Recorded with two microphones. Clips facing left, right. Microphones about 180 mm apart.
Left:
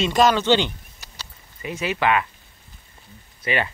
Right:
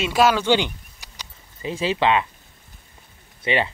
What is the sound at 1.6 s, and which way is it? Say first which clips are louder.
Speech: right 2 dB; 30° right (ahead or behind).